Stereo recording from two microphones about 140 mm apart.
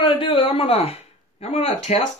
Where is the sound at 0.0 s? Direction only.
40° left (ahead or behind).